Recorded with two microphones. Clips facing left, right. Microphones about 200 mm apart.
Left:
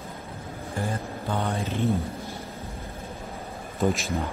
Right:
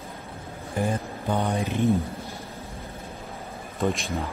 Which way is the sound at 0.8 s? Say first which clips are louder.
Right 4 dB; 15° right (ahead or behind).